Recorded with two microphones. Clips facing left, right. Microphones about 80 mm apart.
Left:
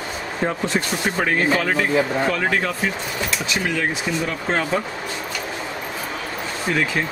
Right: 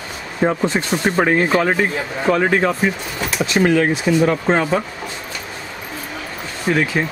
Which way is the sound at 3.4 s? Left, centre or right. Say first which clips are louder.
Right 11 dB; right.